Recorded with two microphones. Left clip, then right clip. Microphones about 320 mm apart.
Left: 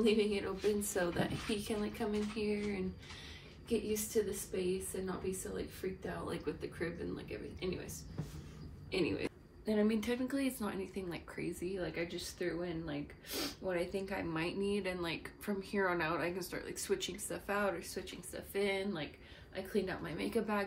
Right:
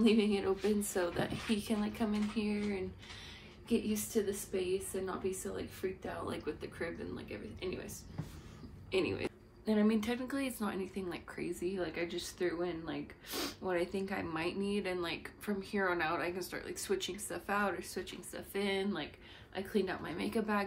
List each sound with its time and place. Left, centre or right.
0.0 s a woman's voice: centre
8.9 s a woman's voice: centre